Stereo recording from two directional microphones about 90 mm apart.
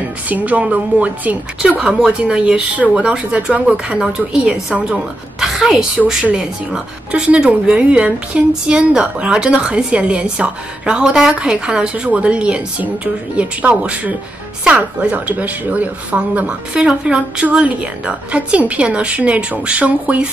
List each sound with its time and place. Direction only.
0.3 s a woman's voice: 15° right (ahead or behind)